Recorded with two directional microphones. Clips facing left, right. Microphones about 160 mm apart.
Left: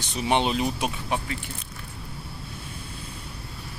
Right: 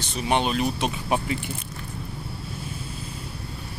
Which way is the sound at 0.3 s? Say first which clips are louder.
Even; 20° left (ahead or behind).